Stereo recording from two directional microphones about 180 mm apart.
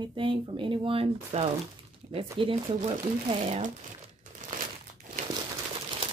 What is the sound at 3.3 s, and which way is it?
Speech, 40° right (ahead or behind).